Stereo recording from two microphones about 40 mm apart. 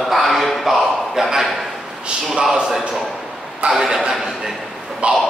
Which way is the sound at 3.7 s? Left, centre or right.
Centre.